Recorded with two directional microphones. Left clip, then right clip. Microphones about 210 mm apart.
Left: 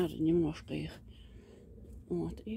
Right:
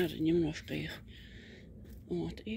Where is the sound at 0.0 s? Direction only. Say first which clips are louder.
Even; 5° left (ahead or behind).